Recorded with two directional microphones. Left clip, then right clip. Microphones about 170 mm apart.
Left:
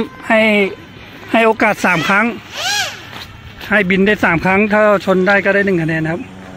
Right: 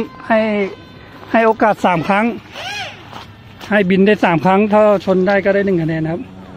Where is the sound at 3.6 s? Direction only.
30° right (ahead or behind); by 6.1 s 15° right (ahead or behind).